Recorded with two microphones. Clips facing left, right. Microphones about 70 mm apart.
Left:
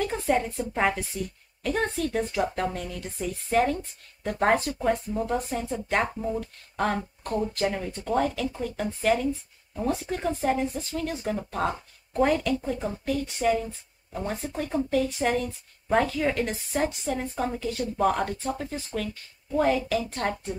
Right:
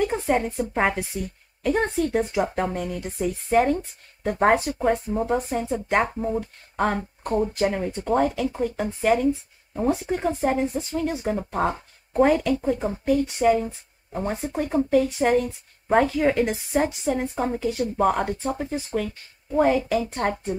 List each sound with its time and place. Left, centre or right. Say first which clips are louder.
0.0 s a woman's voice: right 3 dB; right
7.7 s a woman's voice: right 4 dB; right
15.0 s a woman's voice: right 4 dB; centre
15.3 s a woman's voice: right 6 dB; centre